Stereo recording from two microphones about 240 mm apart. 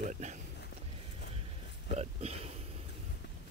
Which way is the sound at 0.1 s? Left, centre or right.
Right.